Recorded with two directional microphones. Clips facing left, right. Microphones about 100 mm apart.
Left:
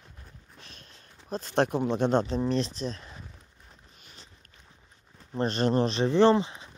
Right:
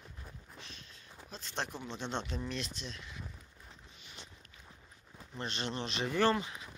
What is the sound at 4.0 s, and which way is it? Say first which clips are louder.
Walk: right 1 dB; 40° left (ahead or behind).